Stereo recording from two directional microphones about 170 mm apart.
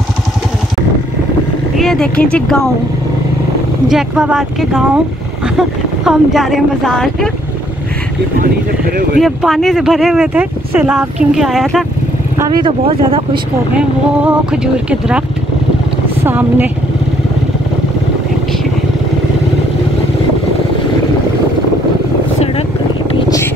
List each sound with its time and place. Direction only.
1.8 s speech: centre (ahead or behind)
3.9 s speech: 5° right (ahead or behind)
9.2 s speech: centre (ahead or behind)
12.4 s speech: 25° right (ahead or behind)
13.7 s speech: 5° right (ahead or behind)
16.3 s a woman's voice: 10° right (ahead or behind)